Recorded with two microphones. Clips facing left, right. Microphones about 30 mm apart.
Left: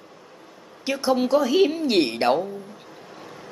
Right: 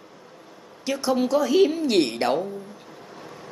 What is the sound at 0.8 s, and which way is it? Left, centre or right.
A woman's voice, centre.